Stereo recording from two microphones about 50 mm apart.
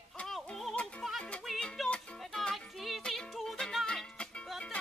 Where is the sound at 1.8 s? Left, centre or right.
Centre.